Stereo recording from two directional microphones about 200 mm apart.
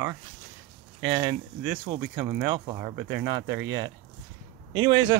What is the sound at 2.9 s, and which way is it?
Speech, 60° right (ahead or behind).